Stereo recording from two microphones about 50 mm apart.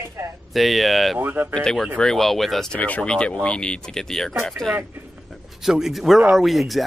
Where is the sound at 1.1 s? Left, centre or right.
Right.